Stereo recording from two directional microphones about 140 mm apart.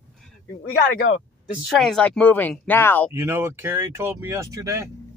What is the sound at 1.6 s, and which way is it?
Speech, centre (ahead or behind).